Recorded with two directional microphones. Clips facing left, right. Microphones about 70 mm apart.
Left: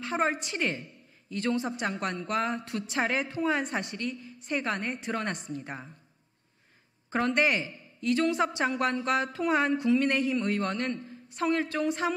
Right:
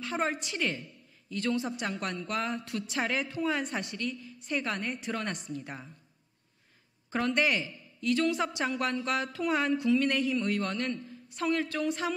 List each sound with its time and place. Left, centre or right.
0.0 s speech: left
7.1 s speech: left
11.3 s speech: left